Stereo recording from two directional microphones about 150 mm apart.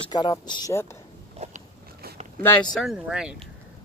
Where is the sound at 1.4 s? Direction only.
45° right (ahead or behind).